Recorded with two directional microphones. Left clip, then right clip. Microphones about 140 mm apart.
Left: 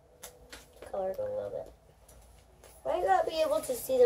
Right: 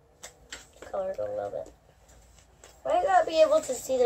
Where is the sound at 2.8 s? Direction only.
15° left (ahead or behind).